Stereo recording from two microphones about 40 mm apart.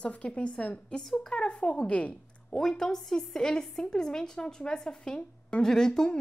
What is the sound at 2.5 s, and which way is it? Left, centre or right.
A woman's voice, centre.